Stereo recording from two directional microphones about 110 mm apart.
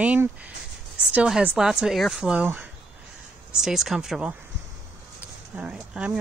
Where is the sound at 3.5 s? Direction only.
5° right (ahead or behind).